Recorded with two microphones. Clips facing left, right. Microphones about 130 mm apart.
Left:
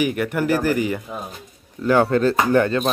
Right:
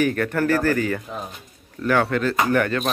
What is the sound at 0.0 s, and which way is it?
Speech, 15° left (ahead or behind).